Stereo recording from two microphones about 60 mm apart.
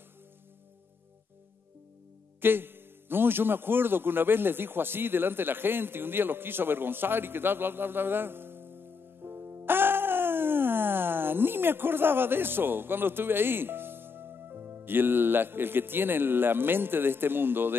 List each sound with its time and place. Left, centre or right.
2.4 s a man's voice: right